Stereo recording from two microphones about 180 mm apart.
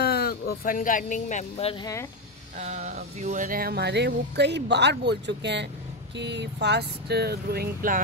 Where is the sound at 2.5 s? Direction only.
40° right (ahead or behind).